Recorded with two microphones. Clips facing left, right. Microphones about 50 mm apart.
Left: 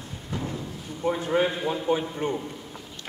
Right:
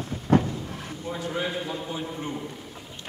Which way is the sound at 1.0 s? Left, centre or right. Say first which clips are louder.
Left 7 dB; left.